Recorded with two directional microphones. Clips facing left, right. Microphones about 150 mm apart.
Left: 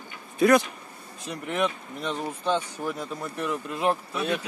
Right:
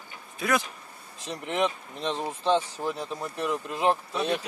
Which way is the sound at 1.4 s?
25° right (ahead or behind).